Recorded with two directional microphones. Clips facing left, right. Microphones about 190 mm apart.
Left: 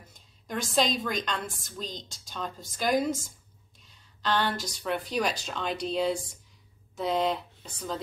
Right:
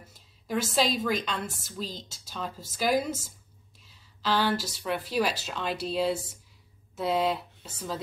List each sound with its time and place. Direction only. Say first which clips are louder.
0.1 s a woman's voice: right 4 dB; 5° right (ahead or behind)